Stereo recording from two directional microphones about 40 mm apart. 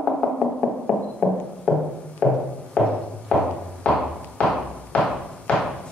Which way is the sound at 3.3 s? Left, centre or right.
Left.